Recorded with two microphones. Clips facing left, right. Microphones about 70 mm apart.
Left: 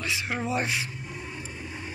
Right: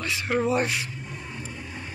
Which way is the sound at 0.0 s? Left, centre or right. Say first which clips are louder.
Right 3 dB; centre.